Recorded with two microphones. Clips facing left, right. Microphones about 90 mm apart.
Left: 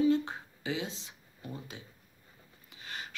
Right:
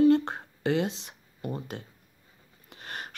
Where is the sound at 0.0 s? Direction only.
65° right (ahead or behind).